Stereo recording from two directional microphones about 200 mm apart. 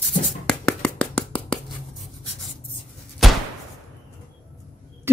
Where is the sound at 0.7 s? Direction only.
5° left (ahead or behind).